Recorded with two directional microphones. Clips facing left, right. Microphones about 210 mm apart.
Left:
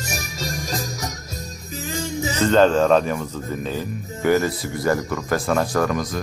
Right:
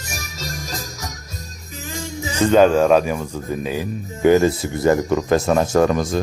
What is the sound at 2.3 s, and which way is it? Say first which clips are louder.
A man's voice: right 3 dB; 10° right (ahead or behind).